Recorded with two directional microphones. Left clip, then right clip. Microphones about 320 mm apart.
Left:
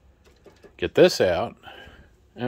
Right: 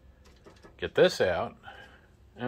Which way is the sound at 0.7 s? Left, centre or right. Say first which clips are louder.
Left 6 dB; left.